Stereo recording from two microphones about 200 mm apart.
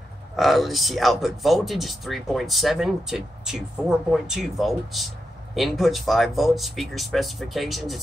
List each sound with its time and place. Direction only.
0.4 s speech: centre (ahead or behind)